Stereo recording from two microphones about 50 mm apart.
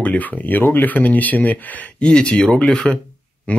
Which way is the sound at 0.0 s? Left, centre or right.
Left.